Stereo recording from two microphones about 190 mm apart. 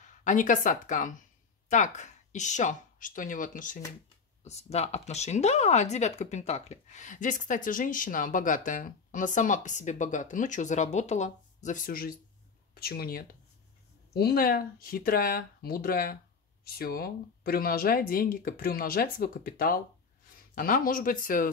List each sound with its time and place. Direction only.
0.0 s speech: 40° left (ahead or behind)